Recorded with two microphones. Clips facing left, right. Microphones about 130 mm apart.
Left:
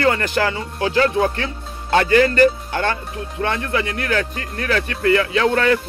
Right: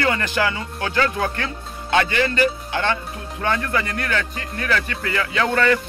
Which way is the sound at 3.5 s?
30° left (ahead or behind).